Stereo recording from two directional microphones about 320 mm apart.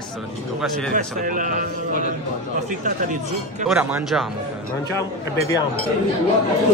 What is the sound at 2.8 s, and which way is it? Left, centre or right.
Speech, right.